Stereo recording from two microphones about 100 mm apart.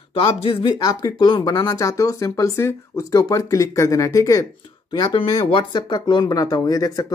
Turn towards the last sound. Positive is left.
turn(degrees=40)  # may be behind; listen again after turning